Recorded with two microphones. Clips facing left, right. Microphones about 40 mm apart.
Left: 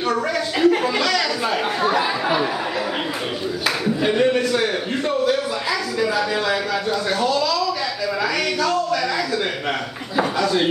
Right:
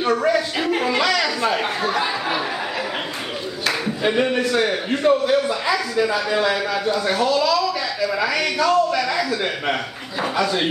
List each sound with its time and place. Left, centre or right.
0.0 s a sound: centre
1.8 s a man's voice: centre
3.6 s a man's voice: centre